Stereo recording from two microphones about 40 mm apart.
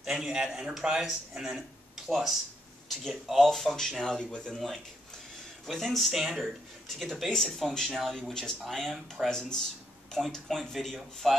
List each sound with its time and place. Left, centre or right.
0.0 s speech: centre
3.4 s speech: centre
5.7 s speech: centre
9.3 s speech: centre